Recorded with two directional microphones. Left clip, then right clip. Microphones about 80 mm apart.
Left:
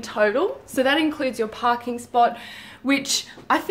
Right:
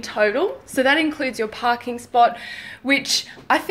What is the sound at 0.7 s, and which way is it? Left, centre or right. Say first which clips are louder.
Speech: right 2 dB; left.